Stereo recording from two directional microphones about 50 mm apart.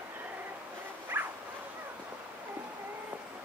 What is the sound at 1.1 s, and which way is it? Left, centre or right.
Dog, right.